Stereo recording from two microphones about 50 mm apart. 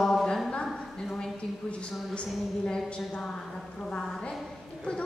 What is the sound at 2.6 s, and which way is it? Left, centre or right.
Speech, centre.